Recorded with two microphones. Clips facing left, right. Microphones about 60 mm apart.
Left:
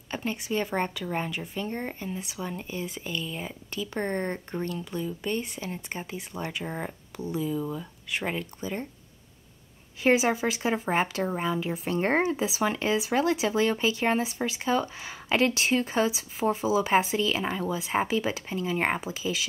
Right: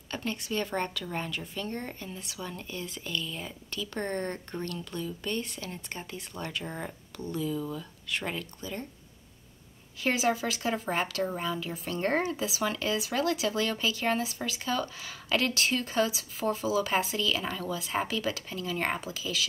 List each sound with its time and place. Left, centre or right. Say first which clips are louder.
0.1 s speech: left 3 dB; centre
10.0 s speech: left 5 dB; left